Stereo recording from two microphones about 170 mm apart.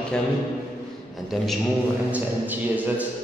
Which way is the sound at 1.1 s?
Centre (ahead or behind).